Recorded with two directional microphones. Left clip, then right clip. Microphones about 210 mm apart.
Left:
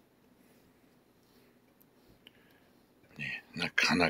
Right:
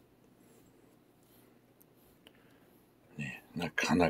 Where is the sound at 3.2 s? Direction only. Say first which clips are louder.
Left 4 dB; 15° right (ahead or behind).